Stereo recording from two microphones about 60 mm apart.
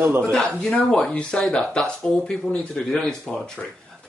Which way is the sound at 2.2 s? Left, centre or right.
Centre.